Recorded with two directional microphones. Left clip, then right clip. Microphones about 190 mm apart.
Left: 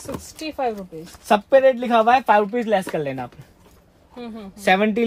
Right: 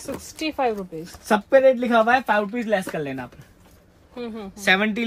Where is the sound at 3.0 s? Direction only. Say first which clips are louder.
Left 3 dB; 35° left (ahead or behind).